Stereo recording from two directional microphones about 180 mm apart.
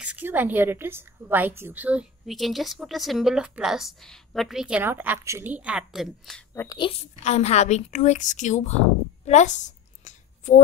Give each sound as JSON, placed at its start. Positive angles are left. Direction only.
{"t": 0.0, "sound": "a woman's voice", "side_deg": -10}
{"t": 6.5, "sound": "a woman's voice", "side_deg": 15}
{"t": 7.2, "sound": "a woman's voice", "side_deg": 35}
{"t": 9.2, "sound": "a sound", "side_deg": 40}